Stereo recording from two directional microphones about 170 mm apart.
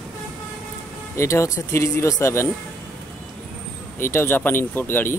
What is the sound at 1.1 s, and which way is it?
Speech, 15° left (ahead or behind).